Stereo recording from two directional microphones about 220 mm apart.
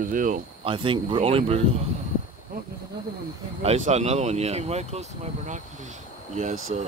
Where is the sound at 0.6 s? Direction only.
25° right (ahead or behind).